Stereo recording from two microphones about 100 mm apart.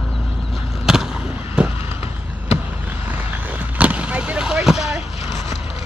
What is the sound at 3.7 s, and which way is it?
Vehicle, 15° right (ahead or behind).